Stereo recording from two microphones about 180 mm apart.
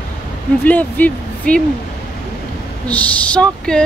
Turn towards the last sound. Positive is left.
turn(degrees=5)  # may be behind; listen again after turning